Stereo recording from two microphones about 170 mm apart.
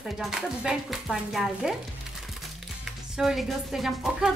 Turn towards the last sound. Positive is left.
turn(degrees=0)  # may be behind; listen again after turning